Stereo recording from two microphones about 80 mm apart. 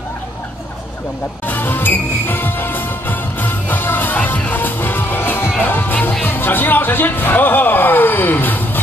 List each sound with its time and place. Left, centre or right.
1.5 s music: left